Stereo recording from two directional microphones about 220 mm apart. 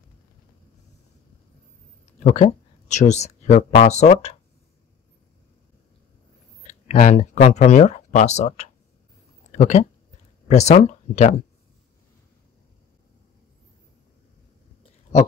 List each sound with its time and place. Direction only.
2.1 s speech: 30° left (ahead or behind)
6.6 s speech: 30° left (ahead or behind)